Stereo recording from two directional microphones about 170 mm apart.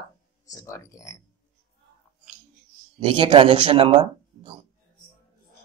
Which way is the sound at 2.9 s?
30° right (ahead or behind).